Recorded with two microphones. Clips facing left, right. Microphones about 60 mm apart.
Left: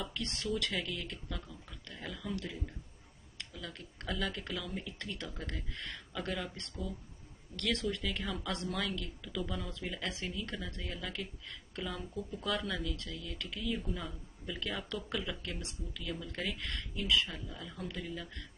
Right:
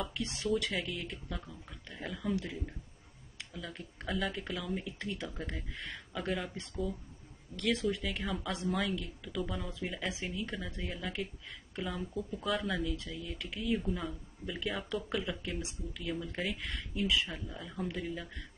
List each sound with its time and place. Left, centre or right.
0.1 s speech: centre
12.8 s speech: centre